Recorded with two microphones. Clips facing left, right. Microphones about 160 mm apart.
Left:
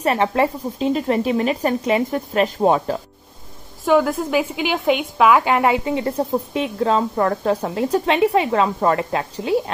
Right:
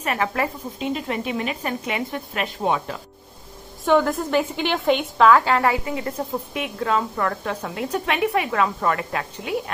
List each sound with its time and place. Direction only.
0.0 s a woman's voice: 30° left (ahead or behind)
3.8 s a woman's voice: 5° left (ahead or behind); by 9.6 s 30° left (ahead or behind)